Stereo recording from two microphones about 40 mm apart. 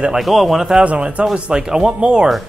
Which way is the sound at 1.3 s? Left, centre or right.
Centre.